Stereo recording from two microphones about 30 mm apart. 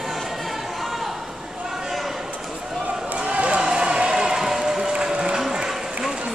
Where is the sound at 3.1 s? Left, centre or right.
Right.